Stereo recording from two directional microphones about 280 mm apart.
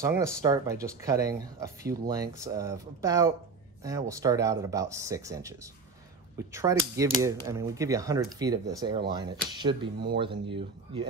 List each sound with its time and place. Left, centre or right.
0.0 s speech: centre